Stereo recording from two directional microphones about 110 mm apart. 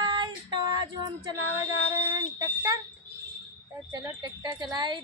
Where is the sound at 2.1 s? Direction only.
40° right (ahead or behind).